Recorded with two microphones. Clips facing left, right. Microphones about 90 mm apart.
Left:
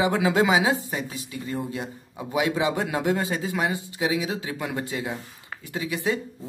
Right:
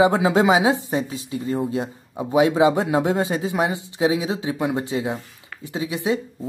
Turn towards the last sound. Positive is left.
turn(degrees=-20)  # may be behind; listen again after turning